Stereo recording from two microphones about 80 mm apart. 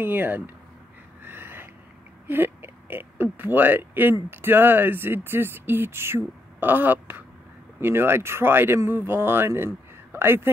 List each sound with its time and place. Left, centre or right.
0.0 s speech: right
1.2 s a sound: right
2.2 s speech: right